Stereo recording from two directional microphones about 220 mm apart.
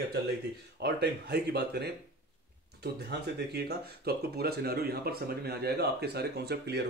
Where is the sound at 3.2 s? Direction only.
50° right (ahead or behind).